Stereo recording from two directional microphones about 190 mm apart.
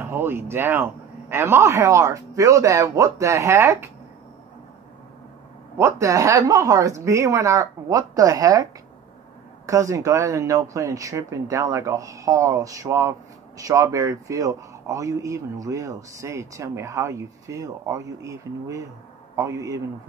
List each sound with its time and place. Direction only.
0.0 s speech: 10° right (ahead or behind)
5.8 s speech: 15° right (ahead or behind)
9.7 s speech: 15° right (ahead or behind)